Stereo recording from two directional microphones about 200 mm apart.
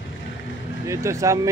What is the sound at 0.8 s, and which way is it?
Speech, 15° right (ahead or behind).